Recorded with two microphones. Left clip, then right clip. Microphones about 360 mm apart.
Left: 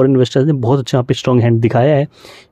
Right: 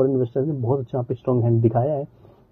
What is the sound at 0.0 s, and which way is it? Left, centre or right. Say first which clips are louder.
Speech: left 8 dB; left.